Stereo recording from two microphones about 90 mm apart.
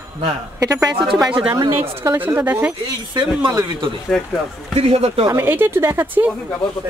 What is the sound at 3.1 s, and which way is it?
Speech, 60° right (ahead or behind).